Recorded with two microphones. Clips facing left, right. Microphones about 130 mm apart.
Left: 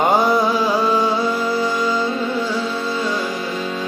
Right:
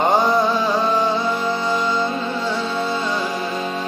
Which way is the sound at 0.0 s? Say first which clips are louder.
Left 1 dB; 10° left (ahead or behind).